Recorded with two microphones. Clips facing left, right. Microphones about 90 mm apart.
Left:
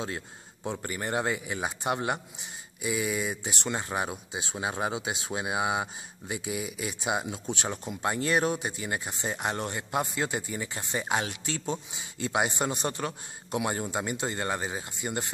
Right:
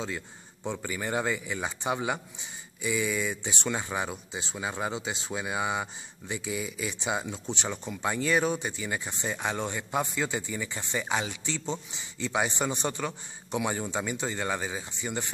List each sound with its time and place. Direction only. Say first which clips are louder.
0.7 s speech: even; 5° left (ahead or behind)
6.5 s speech: right 1 dB; 65° left (ahead or behind)
6.9 s speech: left 3 dB; 10° left (ahead or behind)